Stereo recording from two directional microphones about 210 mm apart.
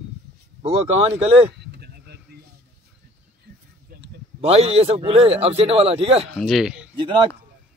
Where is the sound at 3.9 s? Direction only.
45° right (ahead or behind).